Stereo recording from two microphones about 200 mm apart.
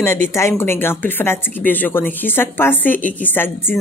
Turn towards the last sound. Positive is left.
turn(degrees=10)  # may be behind; listen again after turning